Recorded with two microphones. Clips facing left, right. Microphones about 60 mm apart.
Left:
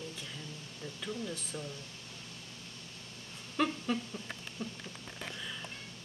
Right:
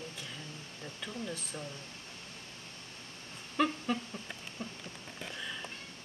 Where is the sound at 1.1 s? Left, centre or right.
Centre.